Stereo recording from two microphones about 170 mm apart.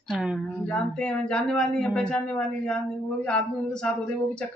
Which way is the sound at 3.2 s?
5° left (ahead or behind).